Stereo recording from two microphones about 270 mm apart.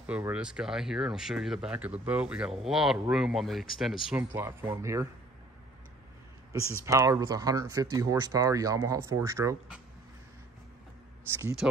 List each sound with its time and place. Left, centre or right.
0.0 s speech: centre
4.2 s speech: centre
6.8 s speech: centre
11.4 s speech: centre